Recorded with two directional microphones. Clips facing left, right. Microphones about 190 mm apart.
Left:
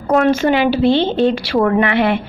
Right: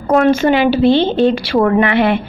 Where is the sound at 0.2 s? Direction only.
25° right (ahead or behind).